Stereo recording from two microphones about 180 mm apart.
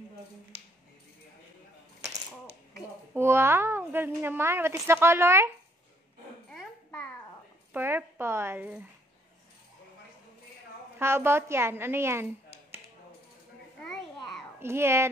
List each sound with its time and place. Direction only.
3.2 s a child's voice: 15° right (ahead or behind)
6.5 s babbling: 5° left (ahead or behind)
7.7 s a child's voice: 10° right (ahead or behind)
11.0 s speech: 15° right (ahead or behind)
14.6 s a child's voice: 15° right (ahead or behind)